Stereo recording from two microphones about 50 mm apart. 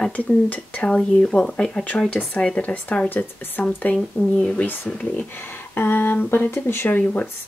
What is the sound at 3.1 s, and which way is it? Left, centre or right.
Speech, left.